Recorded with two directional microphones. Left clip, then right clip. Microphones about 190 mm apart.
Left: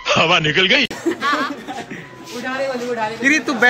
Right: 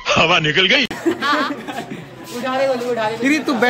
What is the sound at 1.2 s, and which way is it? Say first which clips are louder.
Speech: even; 65° right (ahead or behind).